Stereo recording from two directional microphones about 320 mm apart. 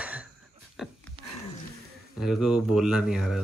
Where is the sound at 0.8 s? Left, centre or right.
Centre.